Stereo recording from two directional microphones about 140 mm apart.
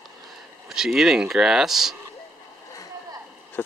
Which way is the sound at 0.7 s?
5° right (ahead or behind).